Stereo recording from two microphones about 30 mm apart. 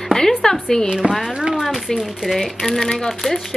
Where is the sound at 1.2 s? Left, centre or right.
Right.